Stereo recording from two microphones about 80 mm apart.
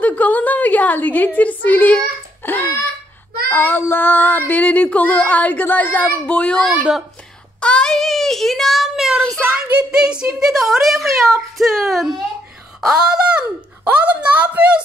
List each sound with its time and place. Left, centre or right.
0.0 s a sound: centre
3.4 s child singing: left
3.9 s female singing: left
6.7 s speech: centre
7.6 s child singing: centre
9.8 s speech: centre